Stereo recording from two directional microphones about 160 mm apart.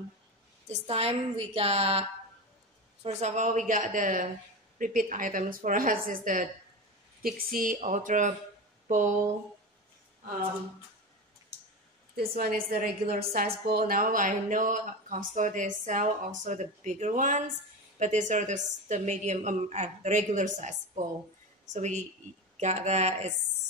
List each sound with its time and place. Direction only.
0.7 s a woman's voice: 40° right (ahead or behind)
12.2 s speech: 65° right (ahead or behind); by 23.3 s 45° right (ahead or behind)